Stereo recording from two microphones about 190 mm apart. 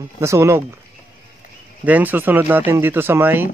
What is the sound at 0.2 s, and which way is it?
Speech, 15° right (ahead or behind).